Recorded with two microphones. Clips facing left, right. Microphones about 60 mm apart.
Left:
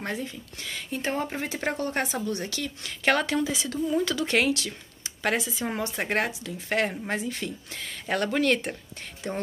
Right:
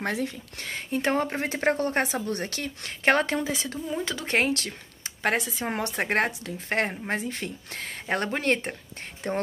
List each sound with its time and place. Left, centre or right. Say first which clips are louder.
0.0 s speech: right 4 dB; right
0.7 s speech: right 4 dB; right
1.0 s speech: right 3 dB; right
1.6 s speech: right 4 dB; right
3.1 s speech: right 1 dB; right
3.8 s speech: left 8 dB; centre
4.2 s speech: left 1 dB; right
9.2 s speech: right 3 dB; right